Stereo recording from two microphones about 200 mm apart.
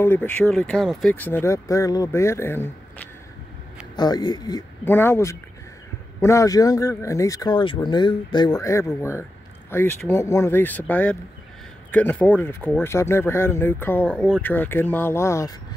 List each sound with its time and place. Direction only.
0.0 s speech: 10° left (ahead or behind)